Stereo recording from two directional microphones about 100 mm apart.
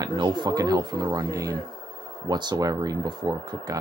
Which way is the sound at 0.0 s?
50° right (ahead or behind).